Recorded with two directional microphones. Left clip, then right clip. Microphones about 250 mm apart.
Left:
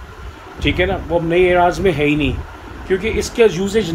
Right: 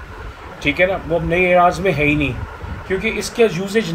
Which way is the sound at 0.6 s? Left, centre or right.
Centre.